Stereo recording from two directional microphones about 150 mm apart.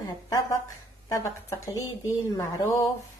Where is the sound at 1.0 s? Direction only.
20° left (ahead or behind).